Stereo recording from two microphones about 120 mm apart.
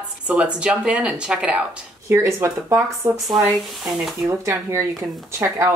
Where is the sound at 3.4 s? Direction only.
Centre (ahead or behind).